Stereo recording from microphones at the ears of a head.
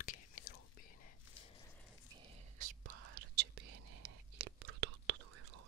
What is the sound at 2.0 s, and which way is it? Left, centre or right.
Whispering, right.